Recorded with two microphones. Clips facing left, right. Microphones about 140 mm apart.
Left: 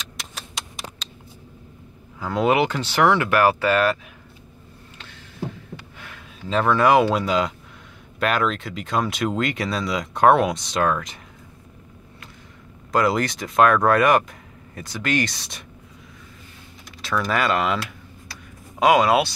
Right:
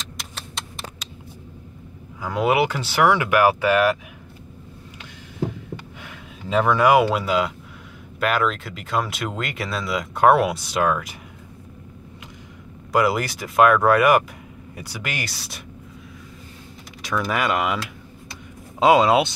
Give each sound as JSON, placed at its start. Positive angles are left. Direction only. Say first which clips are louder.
{"t": 1.0, "sound": "vehicle", "louder": "right 1 dB", "side_deg": -10}
{"t": 2.1, "sound": "speech", "louder": "even", "side_deg": -10}
{"t": 5.9, "sound": "speech", "louder": "right 2 dB", "side_deg": -15}
{"t": 12.9, "sound": "speech", "louder": "even", "side_deg": -10}
{"t": 17.0, "sound": "a sound", "louder": "left 1 dB", "side_deg": -10}